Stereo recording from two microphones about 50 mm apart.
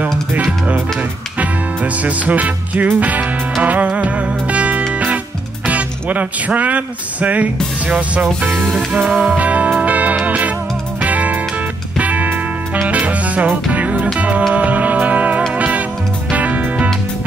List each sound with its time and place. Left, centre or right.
0.0 s music: right
2.0 s music: right
5.7 s speech: right
9.1 s music: right